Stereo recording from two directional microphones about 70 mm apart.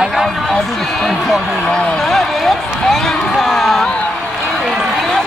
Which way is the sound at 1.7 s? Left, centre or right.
Centre.